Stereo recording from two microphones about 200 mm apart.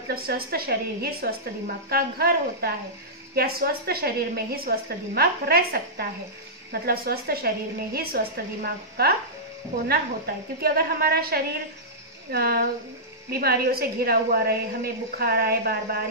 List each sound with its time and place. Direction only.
0.1 s a woman's voice: 50° right (ahead or behind)